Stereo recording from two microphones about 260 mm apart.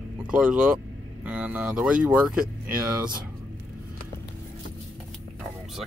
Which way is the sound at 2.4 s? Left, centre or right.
Right.